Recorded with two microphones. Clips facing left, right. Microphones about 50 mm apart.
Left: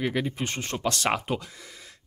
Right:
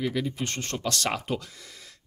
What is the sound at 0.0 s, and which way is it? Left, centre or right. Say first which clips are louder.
Speech: left 1 dB; left.